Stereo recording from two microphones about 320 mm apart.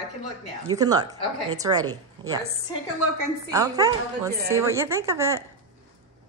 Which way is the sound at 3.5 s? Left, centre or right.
Centre.